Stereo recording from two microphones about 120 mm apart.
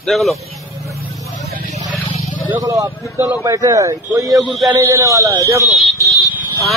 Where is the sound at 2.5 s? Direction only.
30° right (ahead or behind).